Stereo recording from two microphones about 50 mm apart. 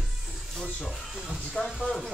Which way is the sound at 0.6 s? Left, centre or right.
Centre.